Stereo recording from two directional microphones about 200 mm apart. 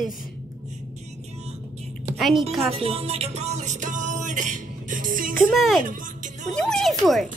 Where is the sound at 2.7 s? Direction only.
30° right (ahead or behind).